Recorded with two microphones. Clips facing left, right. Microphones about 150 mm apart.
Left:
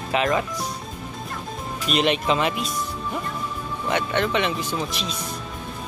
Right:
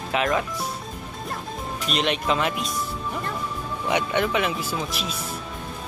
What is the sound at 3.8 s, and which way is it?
Speech, 10° right (ahead or behind).